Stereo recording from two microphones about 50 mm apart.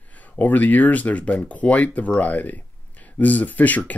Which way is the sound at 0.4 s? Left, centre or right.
Left.